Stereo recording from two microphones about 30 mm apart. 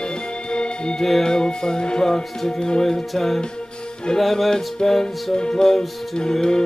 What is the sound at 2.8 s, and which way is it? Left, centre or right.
Music, centre.